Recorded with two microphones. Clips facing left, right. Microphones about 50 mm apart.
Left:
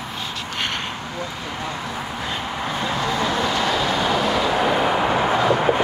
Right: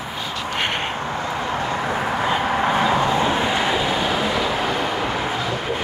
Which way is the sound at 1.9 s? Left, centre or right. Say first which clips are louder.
Right 7 dB; right.